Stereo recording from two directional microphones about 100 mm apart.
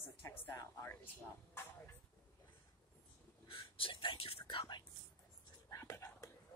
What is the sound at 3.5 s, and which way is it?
Whispering, 60° left (ahead or behind).